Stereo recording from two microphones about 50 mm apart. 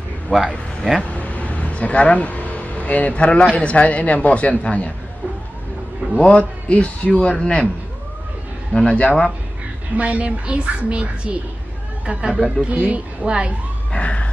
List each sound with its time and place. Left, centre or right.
0.3 s a man's voice: left
1.1 s a sound: left
3.5 s a man's voice: left
6.2 s a man's voice: left
8.8 s a man's voice: left
9.9 s a woman's voice: right
12.4 s speech: centre
12.7 s a woman's voice: right
13.2 s a woman's voice: right
13.9 s emergency vehicle: left